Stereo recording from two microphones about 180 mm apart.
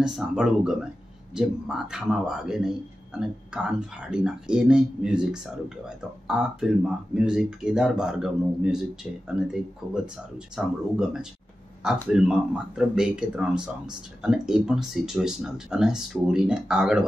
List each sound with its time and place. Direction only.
0.0 s speech: 5° right (ahead or behind)